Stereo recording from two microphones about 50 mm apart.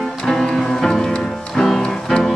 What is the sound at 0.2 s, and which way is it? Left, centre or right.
Music, centre.